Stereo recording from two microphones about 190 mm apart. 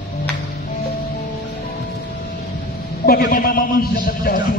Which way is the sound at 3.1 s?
50° left (ahead or behind).